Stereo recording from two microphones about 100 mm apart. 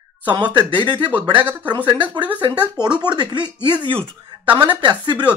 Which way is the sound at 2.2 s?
50° right (ahead or behind).